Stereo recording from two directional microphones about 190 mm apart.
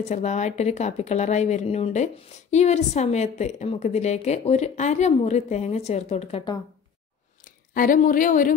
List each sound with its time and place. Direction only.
0.1 s a woman's voice: 40° left (ahead or behind)
7.4 s a woman's voice: 45° left (ahead or behind)